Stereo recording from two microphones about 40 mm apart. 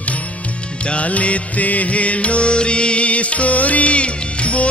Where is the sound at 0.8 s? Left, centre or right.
Left.